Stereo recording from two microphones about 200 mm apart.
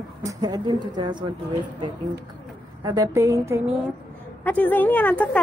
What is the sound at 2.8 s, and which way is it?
Speech, 15° right (ahead or behind).